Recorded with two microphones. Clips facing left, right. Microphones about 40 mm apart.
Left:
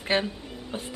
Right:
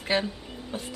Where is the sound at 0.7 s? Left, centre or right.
Left.